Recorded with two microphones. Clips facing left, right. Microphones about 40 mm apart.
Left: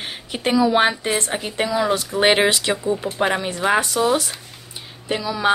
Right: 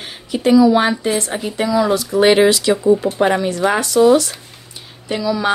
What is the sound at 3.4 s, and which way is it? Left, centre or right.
Speech, centre.